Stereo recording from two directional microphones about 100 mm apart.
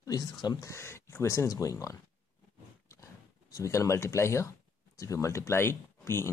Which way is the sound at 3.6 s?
30° left (ahead or behind).